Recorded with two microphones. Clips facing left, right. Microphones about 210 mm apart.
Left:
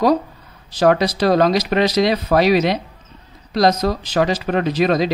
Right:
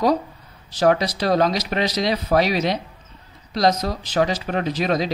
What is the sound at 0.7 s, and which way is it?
Speech, 85° left.